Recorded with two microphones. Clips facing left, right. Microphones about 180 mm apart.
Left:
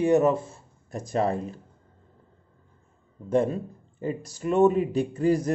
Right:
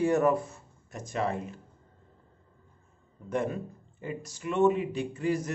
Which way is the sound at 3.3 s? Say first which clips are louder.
Left 7 dB; 30° left (ahead or behind).